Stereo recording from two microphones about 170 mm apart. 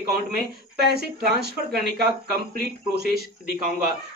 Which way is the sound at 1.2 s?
65° right (ahead or behind).